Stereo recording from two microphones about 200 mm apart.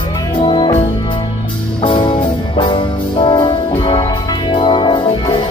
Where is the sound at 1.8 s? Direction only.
25° left (ahead or behind).